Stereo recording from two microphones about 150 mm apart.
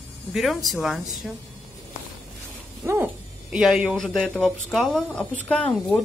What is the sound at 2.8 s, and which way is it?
Dog, 20° right (ahead or behind).